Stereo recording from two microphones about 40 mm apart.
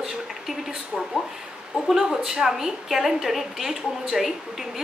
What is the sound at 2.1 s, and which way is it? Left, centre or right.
A woman's voice, centre.